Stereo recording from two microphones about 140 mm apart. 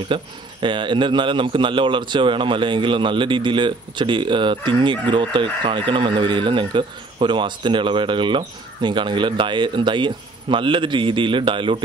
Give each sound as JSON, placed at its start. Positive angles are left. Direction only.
{"t": 0.1, "sound": "a man's voice", "side_deg": -35}